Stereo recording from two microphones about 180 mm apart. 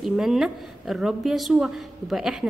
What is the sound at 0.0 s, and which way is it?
A woman's voice, centre (ahead or behind).